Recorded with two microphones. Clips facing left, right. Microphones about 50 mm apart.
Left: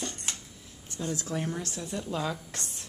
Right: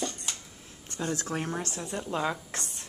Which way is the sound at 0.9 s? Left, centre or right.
Right.